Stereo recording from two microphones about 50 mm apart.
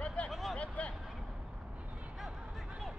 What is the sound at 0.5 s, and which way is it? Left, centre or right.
Vehicle, left.